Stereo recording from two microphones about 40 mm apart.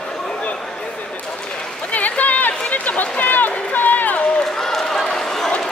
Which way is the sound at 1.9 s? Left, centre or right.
Left.